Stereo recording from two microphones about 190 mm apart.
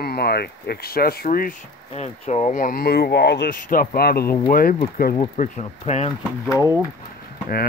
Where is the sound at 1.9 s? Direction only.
35° left (ahead or behind); by 5.2 s 50° left (ahead or behind).